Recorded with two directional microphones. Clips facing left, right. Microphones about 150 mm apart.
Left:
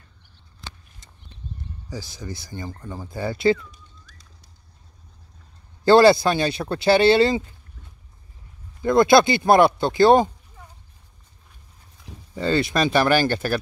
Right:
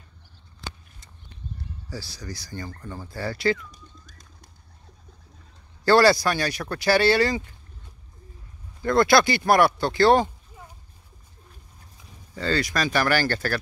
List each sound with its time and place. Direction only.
1.9 s speech: 20° left (ahead or behind)
3.7 s pigeon: 45° right (ahead or behind)
5.9 s speech: 20° left (ahead or behind)
8.8 s speech: 20° left (ahead or behind)
12.4 s speech: 20° left (ahead or behind)